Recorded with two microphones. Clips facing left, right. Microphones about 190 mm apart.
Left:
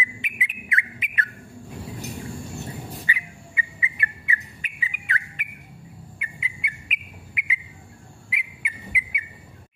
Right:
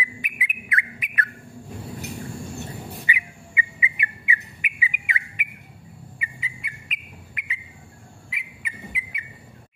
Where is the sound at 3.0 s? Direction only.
15° right (ahead or behind).